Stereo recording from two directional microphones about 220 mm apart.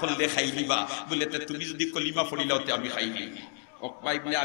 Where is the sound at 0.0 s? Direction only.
15° left (ahead or behind).